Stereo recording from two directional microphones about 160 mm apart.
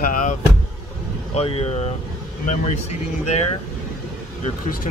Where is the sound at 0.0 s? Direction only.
55° left (ahead or behind).